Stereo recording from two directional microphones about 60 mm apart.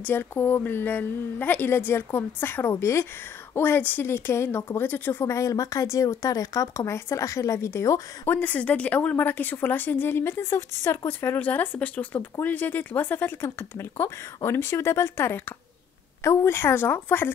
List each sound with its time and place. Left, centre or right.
0.0 s a woman's voice: left
5.2 s speech: left
8.3 s a woman's voice: left
13.4 s a woman's voice: left